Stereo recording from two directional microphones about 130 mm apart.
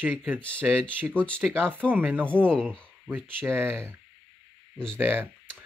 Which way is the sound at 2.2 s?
10° left (ahead or behind).